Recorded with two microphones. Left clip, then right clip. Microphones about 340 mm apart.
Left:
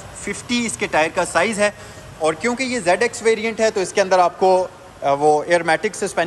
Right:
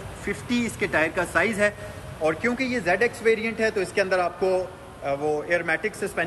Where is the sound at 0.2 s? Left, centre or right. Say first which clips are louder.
Left 4 dB; centre.